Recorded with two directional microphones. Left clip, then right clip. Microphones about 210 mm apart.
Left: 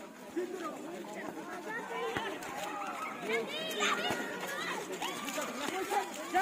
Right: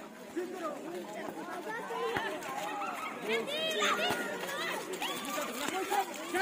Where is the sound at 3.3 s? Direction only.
20° right (ahead or behind).